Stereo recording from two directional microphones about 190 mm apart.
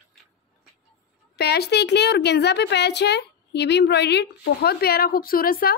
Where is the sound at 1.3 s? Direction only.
60° left (ahead or behind).